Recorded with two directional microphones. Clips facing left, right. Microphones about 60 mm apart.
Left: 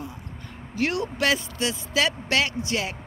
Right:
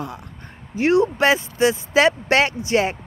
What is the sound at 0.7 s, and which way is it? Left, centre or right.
Speech, right.